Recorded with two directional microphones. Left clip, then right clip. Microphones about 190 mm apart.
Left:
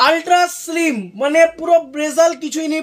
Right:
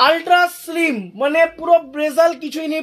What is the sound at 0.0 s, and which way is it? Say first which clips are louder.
Speech: even; 15° right (ahead or behind).